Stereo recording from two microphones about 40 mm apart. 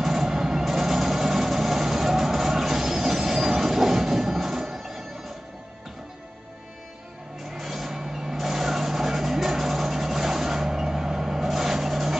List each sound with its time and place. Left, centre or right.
0.0 s vehicle: centre
7.5 s vehicle: centre